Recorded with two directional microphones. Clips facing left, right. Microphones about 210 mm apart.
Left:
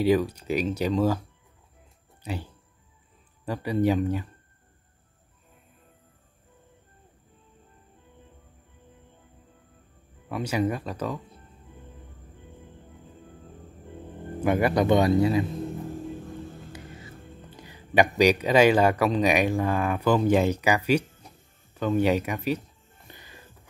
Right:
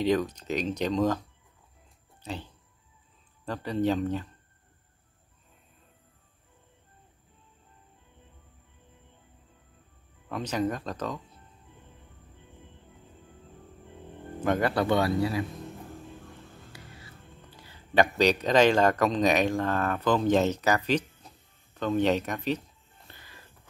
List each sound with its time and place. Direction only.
0.0 s speech: 10° left (ahead or behind)
2.2 s speech: 10° left (ahead or behind)
10.3 s speech: 10° left (ahead or behind)
14.4 s speech: 10° left (ahead or behind)
16.7 s speech: 20° left (ahead or behind)
23.0 s music: 15° left (ahead or behind)